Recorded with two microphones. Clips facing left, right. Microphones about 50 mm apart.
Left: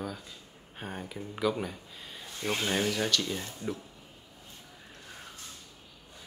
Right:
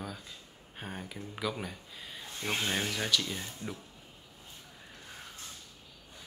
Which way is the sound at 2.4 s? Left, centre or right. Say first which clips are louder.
Left 2 dB; right.